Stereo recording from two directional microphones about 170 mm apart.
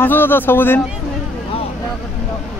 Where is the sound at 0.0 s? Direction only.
10° left (ahead or behind).